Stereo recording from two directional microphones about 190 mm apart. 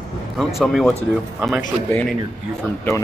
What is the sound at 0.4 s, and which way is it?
Speech, centre (ahead or behind).